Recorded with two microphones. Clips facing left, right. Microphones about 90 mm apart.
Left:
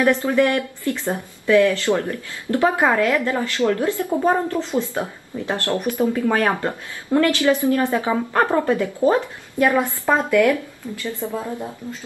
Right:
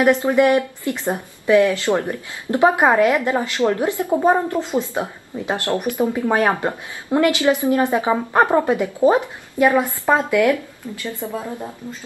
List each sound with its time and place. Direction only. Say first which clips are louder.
0.0 s a woman's voice: right 2 dB; 20° right (ahead or behind)